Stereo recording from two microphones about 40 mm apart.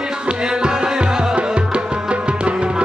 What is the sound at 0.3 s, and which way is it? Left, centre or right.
Music, centre.